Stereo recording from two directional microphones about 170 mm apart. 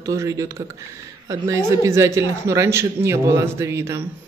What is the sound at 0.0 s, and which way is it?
Speech, 20° right (ahead or behind).